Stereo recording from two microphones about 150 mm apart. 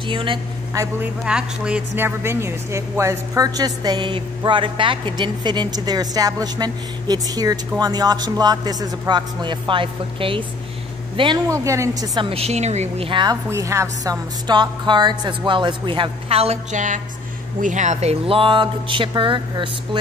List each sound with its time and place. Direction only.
0.1 s a woman's voice: 35° right (ahead or behind)
0.7 s speech: 15° right (ahead or behind)
12.3 s speech: 45° right (ahead or behind)
13.1 s speech: 30° right (ahead or behind)
13.5 s a woman's voice: 20° right (ahead or behind); by 18.1 s 50° right (ahead or behind)
18.2 s a woman's voice: 35° right (ahead or behind)